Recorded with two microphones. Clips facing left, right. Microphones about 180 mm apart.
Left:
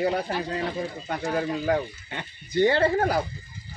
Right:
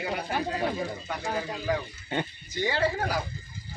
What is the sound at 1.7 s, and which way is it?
Speech, 60° left (ahead or behind).